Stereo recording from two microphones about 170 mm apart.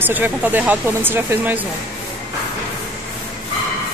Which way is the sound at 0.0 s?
10° right (ahead or behind).